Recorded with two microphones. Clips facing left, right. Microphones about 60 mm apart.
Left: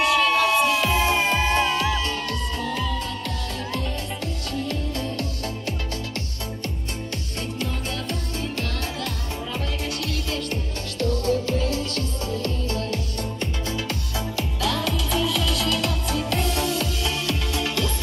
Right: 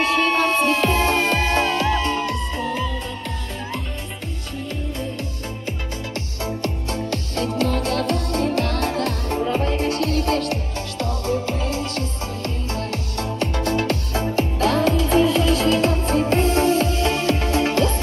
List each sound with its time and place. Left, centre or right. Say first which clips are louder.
0.0 s music: right 1 dB; right; by 2.9 s centre
6.6 s music: right 6 dB; right
11.0 s music: left 1 dB; right
13.2 s music: right 6 dB; right